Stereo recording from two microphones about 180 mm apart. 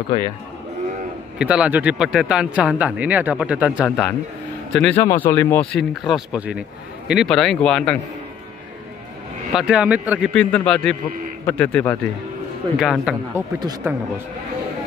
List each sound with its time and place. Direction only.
1.4 s speech: 5° right (ahead or behind)
4.7 s speech: 5° left (ahead or behind)
9.6 s speech: 5° right (ahead or behind)
10.3 s speech: 5° left (ahead or behind)
12.7 s speech: centre (ahead or behind)
13.3 s speech: 15° right (ahead or behind)